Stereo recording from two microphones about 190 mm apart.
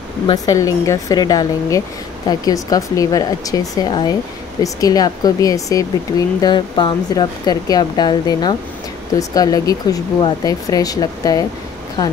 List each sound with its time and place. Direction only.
0.3 s speech: 15° left (ahead or behind)